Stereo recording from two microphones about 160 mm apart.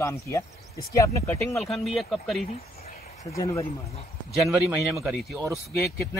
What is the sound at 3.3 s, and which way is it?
Speech, 20° left (ahead or behind).